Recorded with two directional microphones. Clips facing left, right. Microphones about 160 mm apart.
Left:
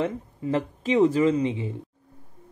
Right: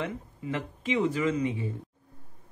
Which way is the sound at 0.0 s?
35° left (ahead or behind).